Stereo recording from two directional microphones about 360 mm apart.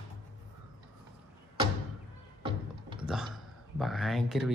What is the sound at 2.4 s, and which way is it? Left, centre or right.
Music, centre.